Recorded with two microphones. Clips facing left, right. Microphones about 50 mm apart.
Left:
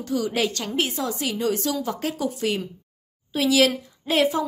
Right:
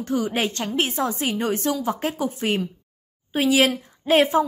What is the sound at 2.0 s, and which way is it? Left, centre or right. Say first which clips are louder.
Speech: right 1 dB; right.